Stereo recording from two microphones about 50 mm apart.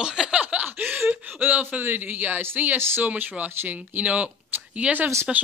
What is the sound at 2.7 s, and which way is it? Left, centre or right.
Speech, right.